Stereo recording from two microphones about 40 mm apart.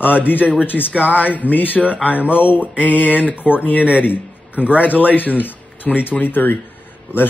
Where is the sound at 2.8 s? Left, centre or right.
Left.